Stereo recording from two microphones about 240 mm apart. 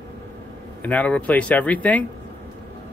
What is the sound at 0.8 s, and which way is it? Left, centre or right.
Speech, centre.